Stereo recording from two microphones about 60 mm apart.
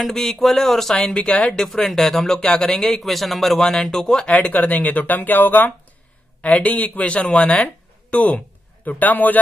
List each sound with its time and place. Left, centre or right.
0.0 s speech: centre
4.4 s speech: left